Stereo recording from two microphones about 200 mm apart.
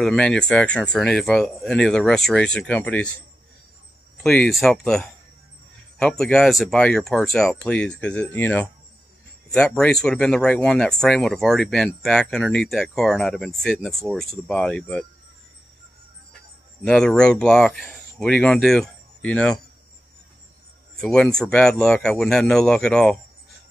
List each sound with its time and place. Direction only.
0.0 s speech: 5° left (ahead or behind)
4.2 s speech: 5° left (ahead or behind)
16.8 s speech: 5° left (ahead or behind)
21.0 s speech: 5° left (ahead or behind)